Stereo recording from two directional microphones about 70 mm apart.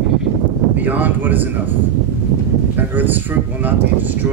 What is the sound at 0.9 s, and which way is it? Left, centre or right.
Speech, right.